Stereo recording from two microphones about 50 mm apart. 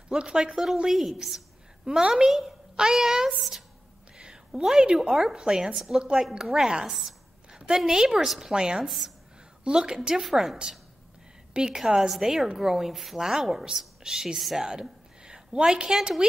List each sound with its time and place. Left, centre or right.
0.1 s a woman's voice: centre
0.8 s a woman's voice: centre
4.2 s a woman's voice: centre
6.2 s a woman's voice: centre
6.9 s a woman's voice: centre
7.5 s a woman's voice: centre
8.8 s a woman's voice: centre
9.7 s a woman's voice: centre
11.7 s a woman's voice: centre